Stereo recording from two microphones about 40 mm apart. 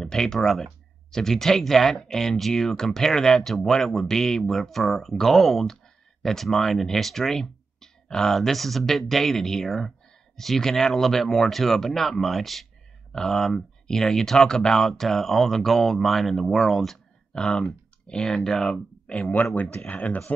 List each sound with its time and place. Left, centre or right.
0.0 s speech: centre
17.3 s speech: centre
19.1 s speech: left
19.9 s speech: left